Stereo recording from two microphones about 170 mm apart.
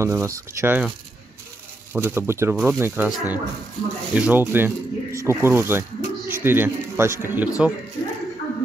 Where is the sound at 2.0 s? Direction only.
15° right (ahead or behind).